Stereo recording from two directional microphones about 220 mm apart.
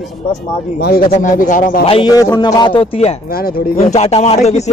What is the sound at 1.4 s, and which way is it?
Speech, 35° left (ahead or behind).